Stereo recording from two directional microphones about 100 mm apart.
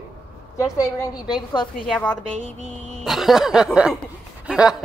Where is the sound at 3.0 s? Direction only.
5° right (ahead or behind).